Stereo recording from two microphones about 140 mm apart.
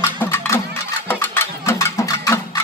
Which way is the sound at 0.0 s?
15° left (ahead or behind).